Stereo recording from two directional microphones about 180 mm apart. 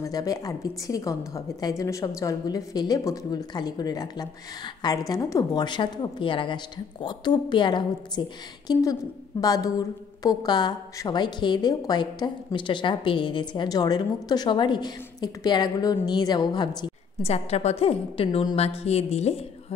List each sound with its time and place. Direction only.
0.0 s a woman's voice: 20° left (ahead or behind)
9.4 s a woman's voice: 20° left (ahead or behind)
17.3 s a woman's voice: 35° left (ahead or behind)